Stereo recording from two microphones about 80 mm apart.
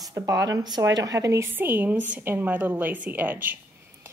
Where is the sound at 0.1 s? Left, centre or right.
Right.